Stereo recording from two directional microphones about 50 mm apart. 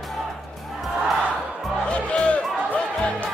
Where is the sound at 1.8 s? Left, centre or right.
Centre.